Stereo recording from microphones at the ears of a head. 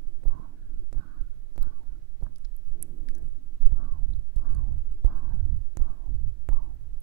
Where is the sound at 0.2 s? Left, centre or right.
Right.